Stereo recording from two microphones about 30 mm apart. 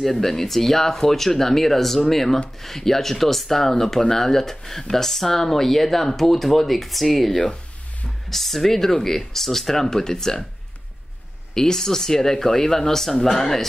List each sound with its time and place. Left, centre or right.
0.0 s speech: centre
11.5 s speech: centre